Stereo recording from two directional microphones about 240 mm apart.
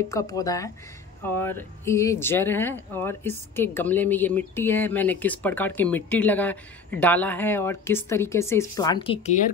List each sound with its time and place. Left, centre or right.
0.1 s speech: centre